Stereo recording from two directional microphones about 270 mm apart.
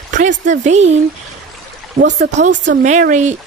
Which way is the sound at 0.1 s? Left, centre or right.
Right.